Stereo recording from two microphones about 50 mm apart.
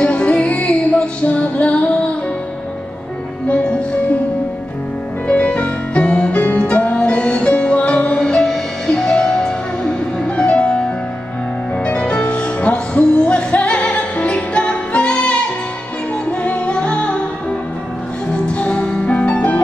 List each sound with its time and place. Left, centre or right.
0.0 s music: left
3.4 s music: left
5.3 s music: left
8.2 s music: centre; by 19.6 s left